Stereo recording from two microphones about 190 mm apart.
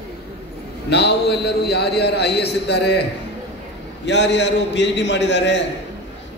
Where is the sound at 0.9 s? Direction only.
60° left (ahead or behind).